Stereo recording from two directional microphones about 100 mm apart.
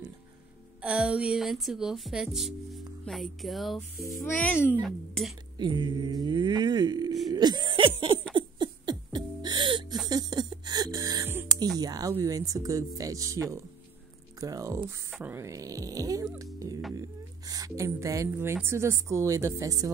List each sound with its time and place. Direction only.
0.8 s speech: 10° right (ahead or behind)
4.2 s speech: 15° left (ahead or behind)
4.8 s speech: centre (ahead or behind)
5.6 s speech: 45° right (ahead or behind)
8.3 s music: 50° right (ahead or behind); by 11.2 s 35° right (ahead or behind)
11.8 s a woman's voice: 35° right (ahead or behind)
15.1 s music: 20° right (ahead or behind)
15.4 s a woman's voice: 35° right (ahead or behind)
16.5 s music: 40° right (ahead or behind)
17.5 s a woman's voice: 35° right (ahead or behind)